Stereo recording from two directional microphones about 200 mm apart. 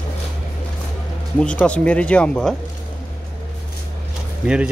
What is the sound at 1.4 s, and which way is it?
Speech, 5° left (ahead or behind).